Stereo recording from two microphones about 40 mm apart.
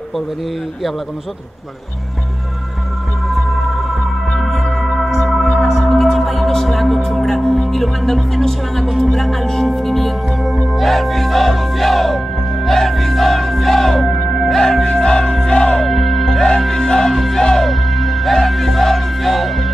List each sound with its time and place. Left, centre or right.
4.3 s music: centre; by 15.8 s left
15.8 s music: centre
16.4 s music: centre
17.6 s music: centre